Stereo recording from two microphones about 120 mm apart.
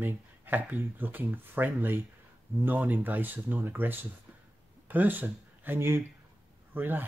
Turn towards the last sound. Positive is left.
turn(degrees=-15)  # may be behind; listen again after turning